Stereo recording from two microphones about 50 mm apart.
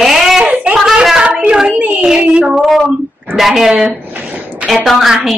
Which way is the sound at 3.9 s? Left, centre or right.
Right.